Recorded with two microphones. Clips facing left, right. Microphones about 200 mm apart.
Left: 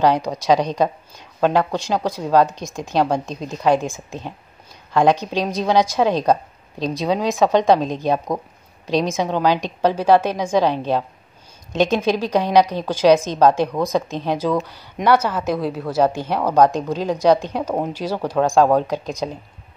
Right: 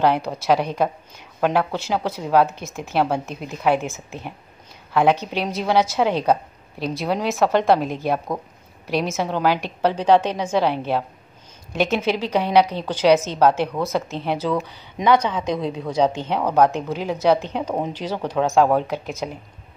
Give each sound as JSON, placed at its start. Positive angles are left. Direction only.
{"t": 0.0, "sound": "a woman's voice", "side_deg": 15}
{"t": 18.6, "sound": "speech", "side_deg": -10}
{"t": 18.9, "sound": "a woman's voice", "side_deg": 15}